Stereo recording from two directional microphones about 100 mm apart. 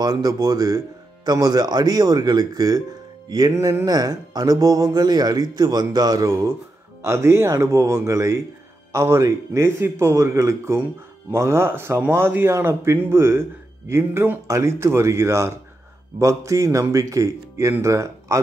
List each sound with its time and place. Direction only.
0.0 s speech: 40° right (ahead or behind)
3.3 s music: 40° right (ahead or behind)
3.8 s speech: 40° right (ahead or behind)